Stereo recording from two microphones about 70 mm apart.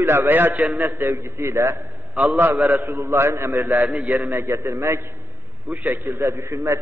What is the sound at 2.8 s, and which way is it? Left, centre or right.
Speech, right.